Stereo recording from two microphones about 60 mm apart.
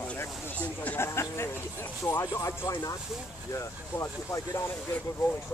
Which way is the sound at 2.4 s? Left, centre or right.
Left.